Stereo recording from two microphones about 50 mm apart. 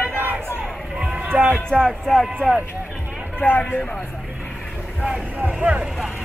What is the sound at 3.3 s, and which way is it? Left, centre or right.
Speech, left.